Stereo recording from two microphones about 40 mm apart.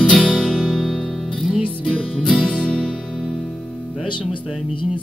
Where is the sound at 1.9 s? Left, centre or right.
Left.